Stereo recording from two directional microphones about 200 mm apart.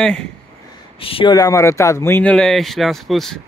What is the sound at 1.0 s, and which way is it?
Speech, 25° left (ahead or behind).